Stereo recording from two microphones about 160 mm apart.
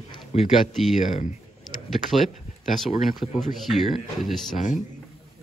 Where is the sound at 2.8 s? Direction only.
Centre (ahead or behind).